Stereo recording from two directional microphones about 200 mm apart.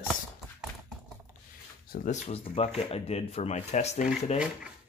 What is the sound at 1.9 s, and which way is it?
Speech, 40° left (ahead or behind).